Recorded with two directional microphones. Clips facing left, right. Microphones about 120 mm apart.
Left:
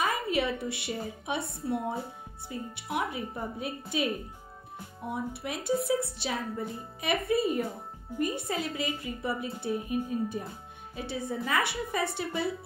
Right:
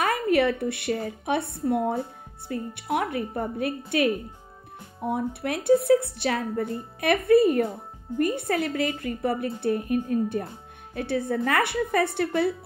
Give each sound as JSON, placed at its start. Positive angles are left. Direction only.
{"t": 0.0, "sound": "a woman's voice", "side_deg": -60}